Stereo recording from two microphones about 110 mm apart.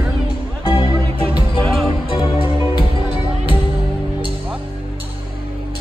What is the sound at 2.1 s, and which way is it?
Music, 50° left (ahead or behind).